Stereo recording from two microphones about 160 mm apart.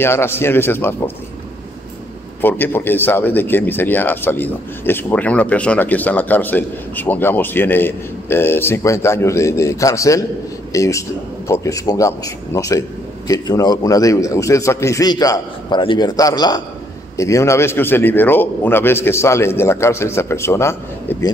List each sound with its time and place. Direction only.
0.0 s speech: 15° left (ahead or behind)
2.4 s a man's voice: 15° left (ahead or behind)